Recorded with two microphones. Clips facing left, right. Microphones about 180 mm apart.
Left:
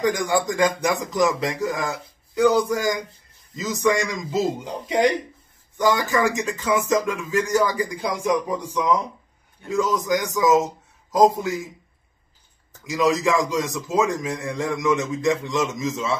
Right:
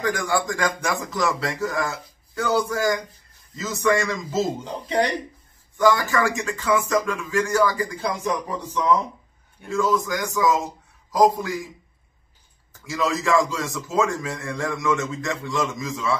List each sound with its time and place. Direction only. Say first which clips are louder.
0.0 s a man's voice: left 2 dB; 20° left (ahead or behind)
12.8 s a man's voice: left 4 dB; 15° left (ahead or behind)